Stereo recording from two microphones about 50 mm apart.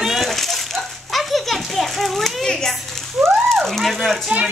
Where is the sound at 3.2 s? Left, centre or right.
Centre.